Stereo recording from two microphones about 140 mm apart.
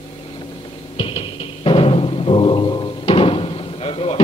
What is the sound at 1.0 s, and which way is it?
Music, 40° left (ahead or behind).